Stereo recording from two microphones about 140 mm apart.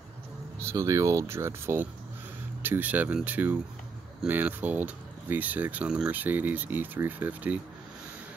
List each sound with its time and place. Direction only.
0.6 s speech: 20° right (ahead or behind)